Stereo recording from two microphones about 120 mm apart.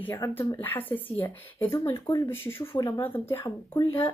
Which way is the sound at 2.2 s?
20° left (ahead or behind).